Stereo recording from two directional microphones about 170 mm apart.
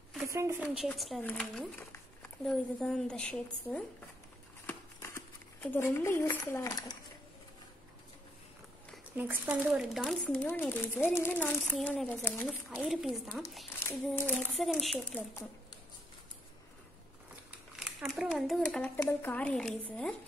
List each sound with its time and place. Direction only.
0.2 s a woman's voice: 15° right (ahead or behind)
0.7 s speech: centre (ahead or behind)
4.6 s a sound: 10° left (ahead or behind)
8.9 s speech: 10° right (ahead or behind); by 12.4 s 10° left (ahead or behind)
12.4 s speech: 5° right (ahead or behind)
13.8 s speech: 15° left (ahead or behind)
14.5 s speech: centre (ahead or behind)
17.7 s a child's voice: 5° right (ahead or behind)